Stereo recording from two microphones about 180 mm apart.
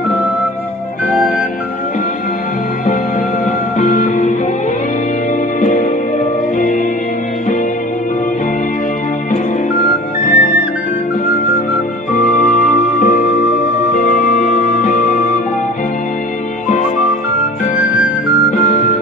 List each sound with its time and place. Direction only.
3.7 s music: 45° left (ahead or behind)
5.6 s music: 45° left (ahead or behind)
9.3 s music: 50° left (ahead or behind)
12.1 s music: 45° left (ahead or behind)
18.6 s music: 40° left (ahead or behind)